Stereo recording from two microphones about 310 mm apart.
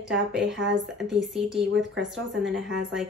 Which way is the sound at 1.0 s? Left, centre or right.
Centre.